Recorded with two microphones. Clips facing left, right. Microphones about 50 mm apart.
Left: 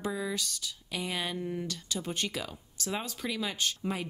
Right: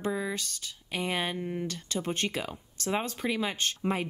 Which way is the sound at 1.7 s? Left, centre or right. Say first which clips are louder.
Right 3 dB; right.